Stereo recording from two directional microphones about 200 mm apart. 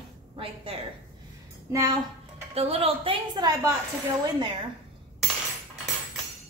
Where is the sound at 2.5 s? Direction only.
30° right (ahead or behind).